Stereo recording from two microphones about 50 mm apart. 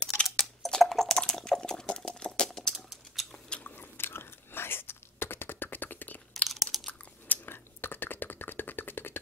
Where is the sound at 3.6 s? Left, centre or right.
Left.